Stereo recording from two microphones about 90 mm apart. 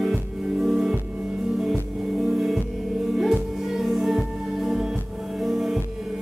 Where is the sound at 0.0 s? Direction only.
Centre (ahead or behind).